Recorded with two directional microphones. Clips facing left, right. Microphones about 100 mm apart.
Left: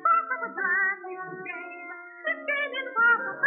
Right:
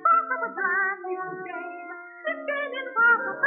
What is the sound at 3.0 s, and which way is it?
Music, 15° right (ahead or behind).